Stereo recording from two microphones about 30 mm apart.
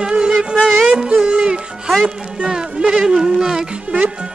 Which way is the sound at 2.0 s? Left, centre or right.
Right.